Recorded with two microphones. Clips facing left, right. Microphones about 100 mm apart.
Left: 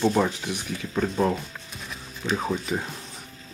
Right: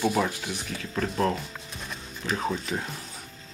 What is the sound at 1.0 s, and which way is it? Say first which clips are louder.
Speech: left 2 dB; centre (ahead or behind).